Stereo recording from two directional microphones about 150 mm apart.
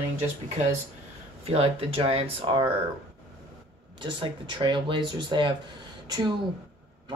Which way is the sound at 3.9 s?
30° right (ahead or behind).